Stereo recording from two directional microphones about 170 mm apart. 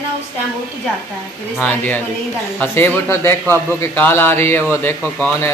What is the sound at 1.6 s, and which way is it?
A man's voice, 10° left (ahead or behind).